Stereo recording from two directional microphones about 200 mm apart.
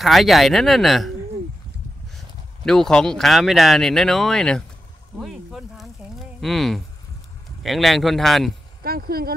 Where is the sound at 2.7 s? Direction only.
5° left (ahead or behind).